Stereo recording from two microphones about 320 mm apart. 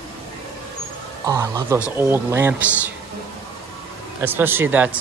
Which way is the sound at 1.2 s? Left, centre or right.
Centre.